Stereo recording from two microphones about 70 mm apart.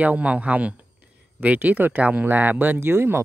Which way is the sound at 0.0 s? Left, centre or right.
Right.